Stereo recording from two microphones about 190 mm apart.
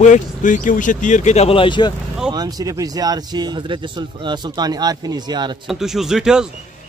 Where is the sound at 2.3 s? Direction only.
20° right (ahead or behind).